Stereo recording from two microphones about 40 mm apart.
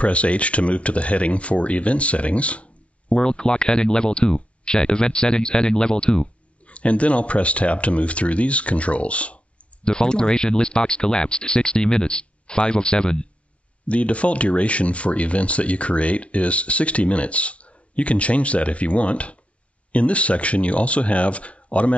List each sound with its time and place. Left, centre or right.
0.0 s speech: left
3.3 s speech: left
6.7 s speech: left
9.8 s speech: left
13.8 s speech: left